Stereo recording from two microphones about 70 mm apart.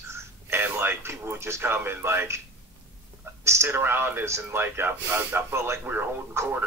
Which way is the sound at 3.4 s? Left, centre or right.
Right.